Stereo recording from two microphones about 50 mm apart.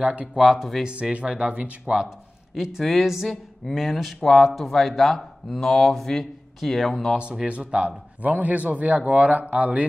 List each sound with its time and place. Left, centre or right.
0.0 s a man's voice: right
0.4 s speech: centre
0.8 s a man's voice: right
1.9 s speech: centre
7.2 s a man's voice: right